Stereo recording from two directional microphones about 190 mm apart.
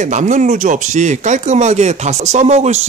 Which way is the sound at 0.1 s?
40° right (ahead or behind).